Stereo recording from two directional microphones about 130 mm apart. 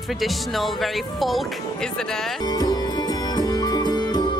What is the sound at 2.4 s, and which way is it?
Music, 30° left (ahead or behind).